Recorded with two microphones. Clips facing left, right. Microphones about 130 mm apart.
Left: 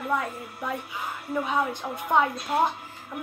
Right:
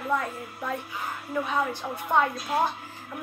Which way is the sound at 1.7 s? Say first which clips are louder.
Left 1 dB; 15° left (ahead or behind).